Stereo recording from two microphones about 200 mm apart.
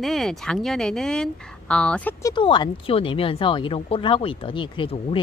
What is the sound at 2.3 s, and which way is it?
Speech, 25° left (ahead or behind).